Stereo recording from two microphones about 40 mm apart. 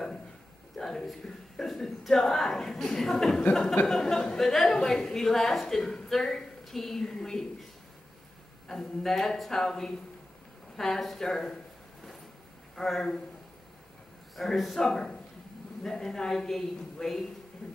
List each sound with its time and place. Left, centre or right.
0.7 s a woman's voice: centre
8.6 s speech: centre
12.7 s speech: centre
14.3 s a man's voice: centre
14.8 s speech: centre